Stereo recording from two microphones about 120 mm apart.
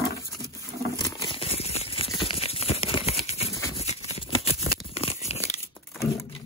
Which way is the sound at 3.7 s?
60° left (ahead or behind).